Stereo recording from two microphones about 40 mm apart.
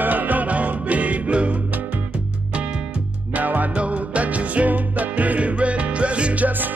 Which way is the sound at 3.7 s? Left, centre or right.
Right.